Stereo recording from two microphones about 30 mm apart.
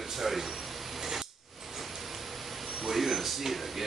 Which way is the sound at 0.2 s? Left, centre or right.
Centre.